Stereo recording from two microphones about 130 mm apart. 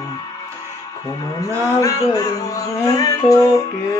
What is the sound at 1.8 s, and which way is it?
Music, 25° left (ahead or behind).